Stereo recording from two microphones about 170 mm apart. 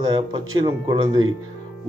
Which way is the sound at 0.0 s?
25° right (ahead or behind).